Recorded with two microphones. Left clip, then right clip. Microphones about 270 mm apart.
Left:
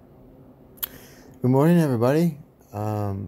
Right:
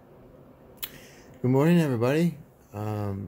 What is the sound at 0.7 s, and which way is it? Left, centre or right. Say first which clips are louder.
Speech: left 2 dB; centre.